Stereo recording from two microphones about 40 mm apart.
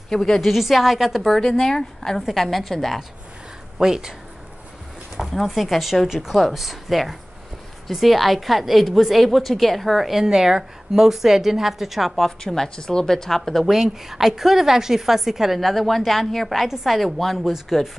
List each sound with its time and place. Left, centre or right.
0.1 s a woman's voice: centre
0.4 s a woman's voice: centre
1.2 s a woman's voice: centre
3.7 s a woman's voice: centre
5.5 s a woman's voice: centre
12.2 s a woman's voice: centre
13.7 s a woman's voice: centre